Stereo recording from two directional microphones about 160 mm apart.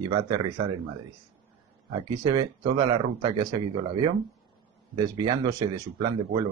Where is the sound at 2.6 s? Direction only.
35° right (ahead or behind).